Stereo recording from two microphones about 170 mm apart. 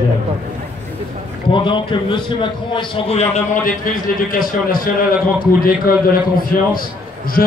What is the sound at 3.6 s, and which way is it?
A man's voice, 55° left (ahead or behind).